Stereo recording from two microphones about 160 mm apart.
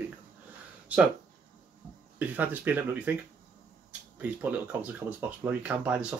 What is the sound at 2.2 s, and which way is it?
Speech, 10° right (ahead or behind).